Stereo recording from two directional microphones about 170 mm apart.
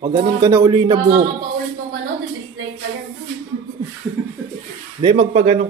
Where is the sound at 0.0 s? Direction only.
25° right (ahead or behind).